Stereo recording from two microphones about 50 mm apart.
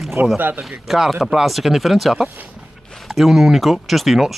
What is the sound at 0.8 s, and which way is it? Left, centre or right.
Speech, centre.